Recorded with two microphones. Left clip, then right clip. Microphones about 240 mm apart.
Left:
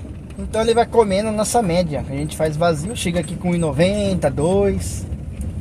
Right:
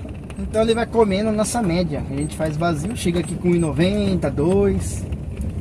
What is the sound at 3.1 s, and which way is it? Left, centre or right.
Speech, left.